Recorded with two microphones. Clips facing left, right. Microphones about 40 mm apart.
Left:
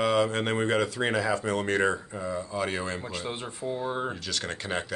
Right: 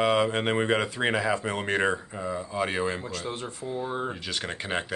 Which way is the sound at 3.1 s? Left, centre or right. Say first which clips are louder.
Right 1 dB; centre.